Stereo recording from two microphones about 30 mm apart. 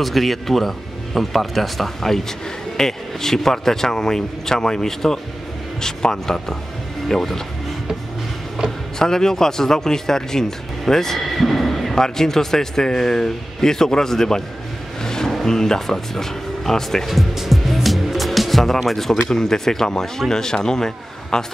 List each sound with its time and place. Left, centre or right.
0.0 s a man's voice: centre
8.9 s speech: centre
11.1 s a sound: centre
11.9 s speech: centre
15.0 s vehicle: centre
15.4 s speech: centre
17.0 s music: centre
18.9 s a man's voice: centre